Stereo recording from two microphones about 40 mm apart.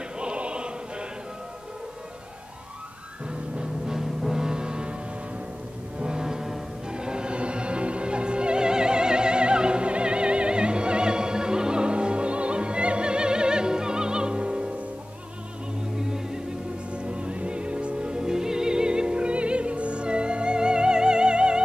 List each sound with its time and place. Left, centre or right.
0.2 s choir: right
3.3 s music: centre
5.9 s foghorn: right
6.9 s music: right
16.0 s music: centre
16.9 s music: right